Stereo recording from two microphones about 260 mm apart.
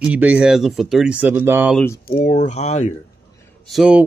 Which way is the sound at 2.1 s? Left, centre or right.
Left.